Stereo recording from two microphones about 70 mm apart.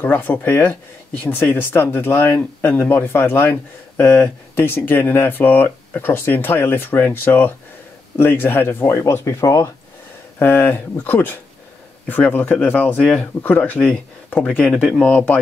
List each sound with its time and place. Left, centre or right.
0.0 s speech: left
9.0 s speech: left
10.4 s speech: left